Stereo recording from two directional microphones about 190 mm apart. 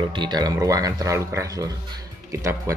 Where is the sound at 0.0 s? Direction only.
25° right (ahead or behind).